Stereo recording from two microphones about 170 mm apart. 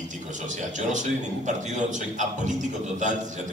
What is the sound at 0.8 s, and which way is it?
A man's voice, 45° right (ahead or behind).